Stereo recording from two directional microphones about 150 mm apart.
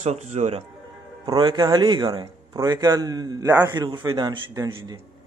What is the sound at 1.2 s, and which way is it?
A man's voice, 30° right (ahead or behind).